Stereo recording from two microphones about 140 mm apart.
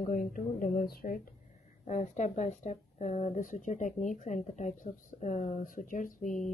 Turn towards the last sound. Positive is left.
turn(degrees=65)  # may be behind; listen again after turning